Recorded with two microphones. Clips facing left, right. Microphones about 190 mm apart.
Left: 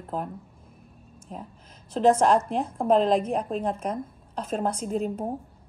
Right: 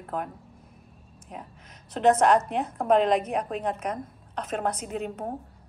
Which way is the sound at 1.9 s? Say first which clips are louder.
Even; 30° left (ahead or behind).